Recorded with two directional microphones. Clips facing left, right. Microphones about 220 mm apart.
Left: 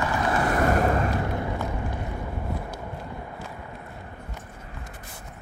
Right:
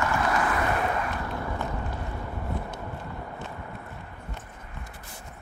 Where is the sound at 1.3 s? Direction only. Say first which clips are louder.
Left 3 dB; 15° left (ahead or behind).